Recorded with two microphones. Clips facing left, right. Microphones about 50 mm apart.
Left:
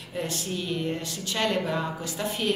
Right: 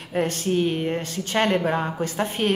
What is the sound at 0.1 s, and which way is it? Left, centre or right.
A woman's voice, right.